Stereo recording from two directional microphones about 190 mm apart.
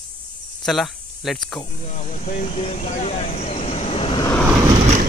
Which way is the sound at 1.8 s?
40° left (ahead or behind).